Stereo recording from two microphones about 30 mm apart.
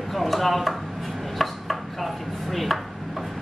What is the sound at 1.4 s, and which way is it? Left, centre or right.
Chopping, centre.